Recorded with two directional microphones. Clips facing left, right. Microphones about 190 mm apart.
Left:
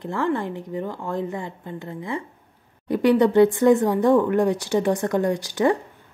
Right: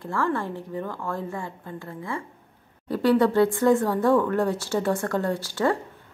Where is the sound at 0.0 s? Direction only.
20° left (ahead or behind).